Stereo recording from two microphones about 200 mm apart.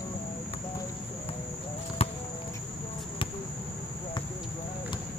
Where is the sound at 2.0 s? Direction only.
30° left (ahead or behind).